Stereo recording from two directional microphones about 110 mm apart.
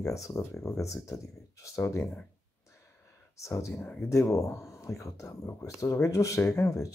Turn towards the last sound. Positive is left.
turn(degrees=30)  # may be behind; listen again after turning